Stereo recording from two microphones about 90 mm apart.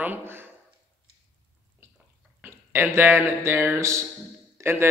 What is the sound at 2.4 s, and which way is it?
Speech, 25° right (ahead or behind).